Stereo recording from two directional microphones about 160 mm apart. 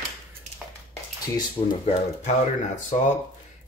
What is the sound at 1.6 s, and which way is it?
Speech, 35° left (ahead or behind).